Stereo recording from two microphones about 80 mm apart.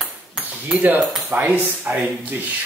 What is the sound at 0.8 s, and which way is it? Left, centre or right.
Cutlery, right.